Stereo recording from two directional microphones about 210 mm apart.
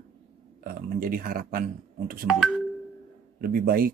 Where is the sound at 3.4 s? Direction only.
45° right (ahead or behind).